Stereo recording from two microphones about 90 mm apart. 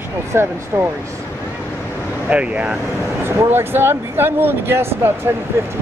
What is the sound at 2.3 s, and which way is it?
Speech, 15° right (ahead or behind).